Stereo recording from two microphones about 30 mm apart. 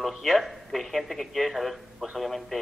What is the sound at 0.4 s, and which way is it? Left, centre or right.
A man's voice, centre.